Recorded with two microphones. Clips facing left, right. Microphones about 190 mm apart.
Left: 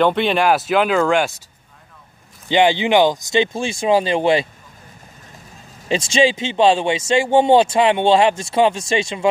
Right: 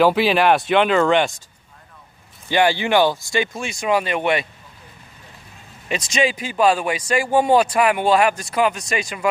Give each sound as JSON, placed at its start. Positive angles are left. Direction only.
{"t": 0.0, "sound": "speech", "side_deg": -5}
{"t": 2.4, "sound": "speech", "side_deg": 20}
{"t": 5.9, "sound": "speech", "side_deg": 30}